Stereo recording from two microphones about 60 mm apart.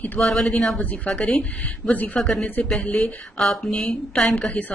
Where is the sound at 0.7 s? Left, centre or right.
Left.